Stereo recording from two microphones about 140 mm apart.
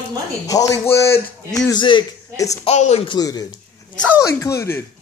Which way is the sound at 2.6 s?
50° left (ahead or behind).